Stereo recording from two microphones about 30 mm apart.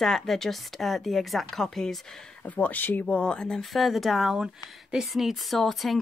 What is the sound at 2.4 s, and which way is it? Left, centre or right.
Speech, left.